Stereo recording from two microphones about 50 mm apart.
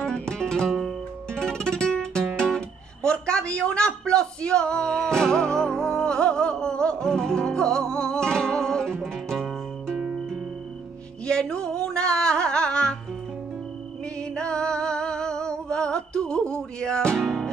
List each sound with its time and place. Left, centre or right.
0.3 s music: centre
2.3 s guitar: centre
9.0 s music: centre
9.9 s music: right
11.2 s music: centre
14.3 s humming: centre
17.2 s music: centre